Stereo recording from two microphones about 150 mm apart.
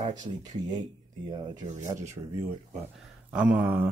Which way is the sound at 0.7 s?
30° right (ahead or behind).